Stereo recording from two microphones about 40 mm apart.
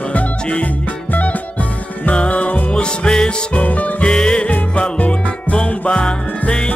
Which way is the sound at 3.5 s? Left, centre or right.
Left.